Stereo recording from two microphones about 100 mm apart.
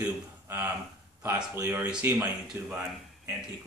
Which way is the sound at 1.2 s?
30° right (ahead or behind).